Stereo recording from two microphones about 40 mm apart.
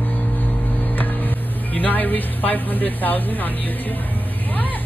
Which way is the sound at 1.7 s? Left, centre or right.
Left.